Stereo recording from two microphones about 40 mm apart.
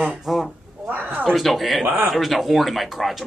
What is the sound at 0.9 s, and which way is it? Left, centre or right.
Speech, right.